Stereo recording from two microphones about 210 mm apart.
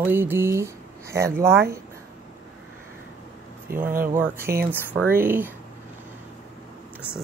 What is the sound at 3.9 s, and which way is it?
Speech, 40° right (ahead or behind).